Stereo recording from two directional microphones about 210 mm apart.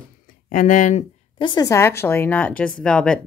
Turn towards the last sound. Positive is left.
turn(degrees=5)  # may be behind; listen again after turning